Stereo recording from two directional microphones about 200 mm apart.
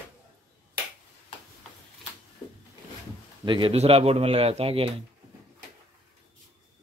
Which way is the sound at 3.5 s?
25° right (ahead or behind).